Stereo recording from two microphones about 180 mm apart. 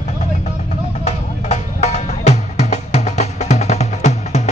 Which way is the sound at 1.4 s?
40° left (ahead or behind).